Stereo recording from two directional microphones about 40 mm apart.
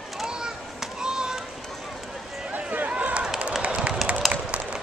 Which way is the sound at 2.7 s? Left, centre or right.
Right.